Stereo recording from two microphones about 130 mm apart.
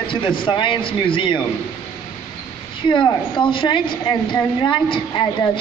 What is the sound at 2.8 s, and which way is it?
A woman's voice, 40° left (ahead or behind).